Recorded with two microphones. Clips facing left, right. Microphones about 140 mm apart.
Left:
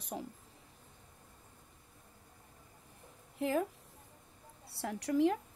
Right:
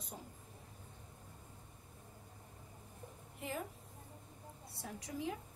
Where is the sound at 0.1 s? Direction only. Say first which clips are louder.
Left 10 dB; 85° left.